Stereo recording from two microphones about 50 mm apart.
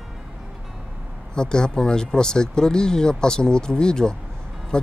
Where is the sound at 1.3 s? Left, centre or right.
Centre.